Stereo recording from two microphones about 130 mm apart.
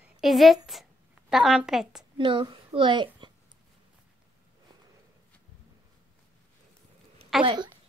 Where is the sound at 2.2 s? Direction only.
35° right (ahead or behind).